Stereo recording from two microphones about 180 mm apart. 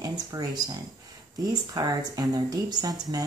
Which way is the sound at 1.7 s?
20° right (ahead or behind).